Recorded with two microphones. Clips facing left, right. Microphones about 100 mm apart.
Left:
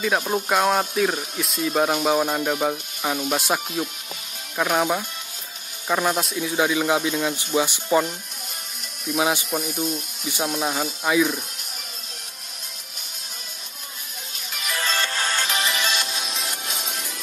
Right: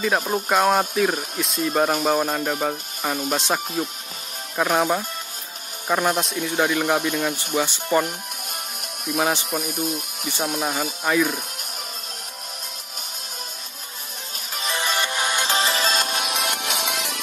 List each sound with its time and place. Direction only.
0.0 s speech: centre (ahead or behind)
9.1 s speech: 5° left (ahead or behind)
9.5 s speech: 5° right (ahead or behind)
14.8 s music: 15° right (ahead or behind)
15.4 s music: 35° right (ahead or behind)
16.1 s music: 65° right (ahead or behind)